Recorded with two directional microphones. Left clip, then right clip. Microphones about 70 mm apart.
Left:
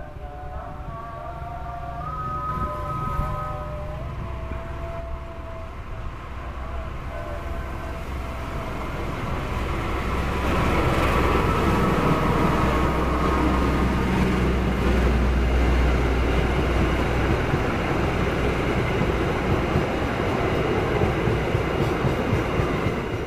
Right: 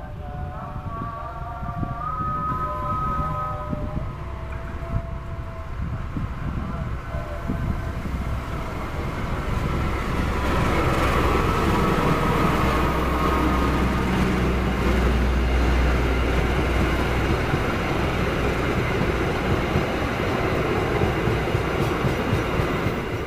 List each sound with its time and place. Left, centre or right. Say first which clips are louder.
9.8 s vehicle: even; centre; by 23.2 s right